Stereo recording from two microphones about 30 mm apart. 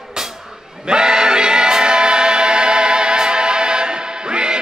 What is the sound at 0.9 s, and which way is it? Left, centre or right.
Choir, right.